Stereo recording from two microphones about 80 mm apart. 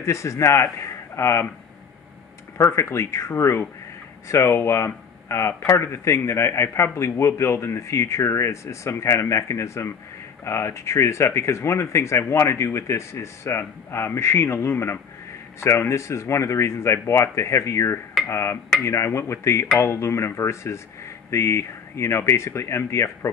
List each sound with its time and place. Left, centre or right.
0.0 s speech: left
2.5 s speech: left